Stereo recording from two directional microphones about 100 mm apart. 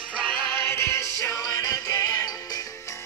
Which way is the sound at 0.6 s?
25° left (ahead or behind).